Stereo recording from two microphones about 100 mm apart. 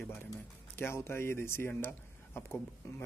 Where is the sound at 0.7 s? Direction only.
25° left (ahead or behind).